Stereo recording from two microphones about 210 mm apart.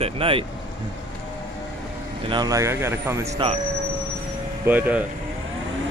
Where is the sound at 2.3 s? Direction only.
20° right (ahead or behind).